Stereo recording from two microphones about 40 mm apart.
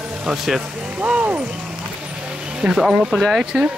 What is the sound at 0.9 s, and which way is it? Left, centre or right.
Speech, right.